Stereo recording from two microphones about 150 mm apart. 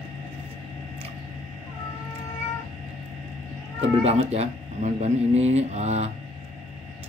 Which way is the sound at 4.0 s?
40° right (ahead or behind).